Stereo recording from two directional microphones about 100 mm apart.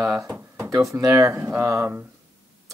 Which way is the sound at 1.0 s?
30° right (ahead or behind).